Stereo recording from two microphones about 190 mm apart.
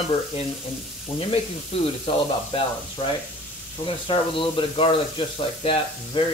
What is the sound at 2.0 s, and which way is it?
Speech, 30° left (ahead or behind).